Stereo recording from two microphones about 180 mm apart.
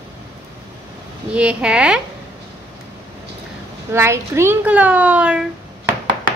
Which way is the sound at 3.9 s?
15° right (ahead or behind).